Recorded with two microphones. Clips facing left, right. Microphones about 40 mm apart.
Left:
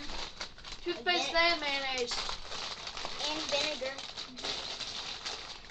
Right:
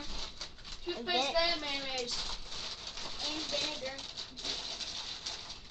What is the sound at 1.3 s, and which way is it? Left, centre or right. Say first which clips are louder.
A child's voice: left 3 dB; left.